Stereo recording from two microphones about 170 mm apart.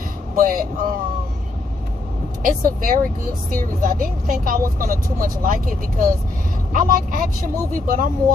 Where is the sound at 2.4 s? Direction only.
55° right (ahead or behind).